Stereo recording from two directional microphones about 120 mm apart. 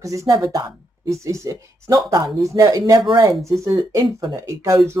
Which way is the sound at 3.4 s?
25° right (ahead or behind).